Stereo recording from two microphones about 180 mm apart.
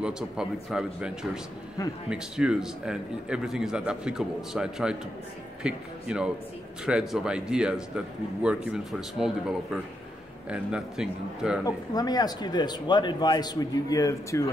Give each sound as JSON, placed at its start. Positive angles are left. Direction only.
{"t": 0.0, "sound": "a man's voice", "side_deg": -5}
{"t": 11.6, "sound": "speech", "side_deg": 20}